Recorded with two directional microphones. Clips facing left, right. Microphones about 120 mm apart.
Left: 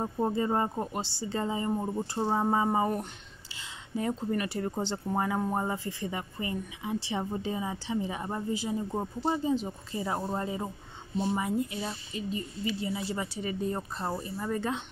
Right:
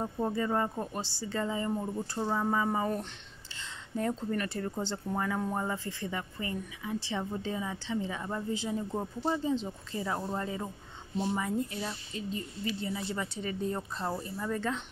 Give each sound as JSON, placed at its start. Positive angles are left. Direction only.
{"t": 0.0, "sound": "speech", "side_deg": 25}
{"t": 8.5, "sound": "speech", "side_deg": 5}
{"t": 8.9, "sound": "speech", "side_deg": 20}